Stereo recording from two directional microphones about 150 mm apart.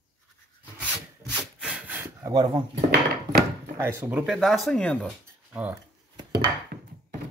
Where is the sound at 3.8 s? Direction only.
15° right (ahead or behind).